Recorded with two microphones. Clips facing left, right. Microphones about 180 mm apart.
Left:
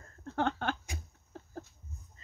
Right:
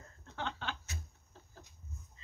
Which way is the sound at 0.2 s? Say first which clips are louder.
Left 9 dB; 50° left (ahead or behind).